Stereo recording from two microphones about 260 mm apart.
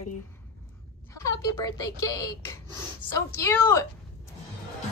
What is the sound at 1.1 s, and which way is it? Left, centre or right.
A woman's voice, centre.